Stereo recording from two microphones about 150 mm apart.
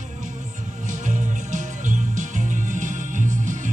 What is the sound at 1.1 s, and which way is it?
Music, 55° right (ahead or behind).